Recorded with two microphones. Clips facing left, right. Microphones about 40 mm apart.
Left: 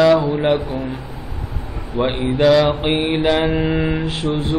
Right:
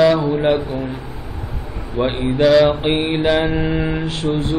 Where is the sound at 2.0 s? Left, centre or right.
Left.